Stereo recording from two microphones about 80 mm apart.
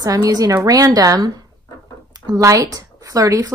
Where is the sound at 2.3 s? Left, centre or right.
Right.